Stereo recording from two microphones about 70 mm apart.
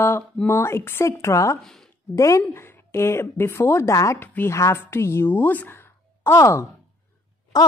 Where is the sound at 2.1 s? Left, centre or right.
Left.